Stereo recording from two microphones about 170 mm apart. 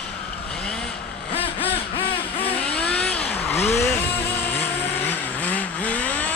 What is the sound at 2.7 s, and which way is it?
Vehicle, 5° left (ahead or behind).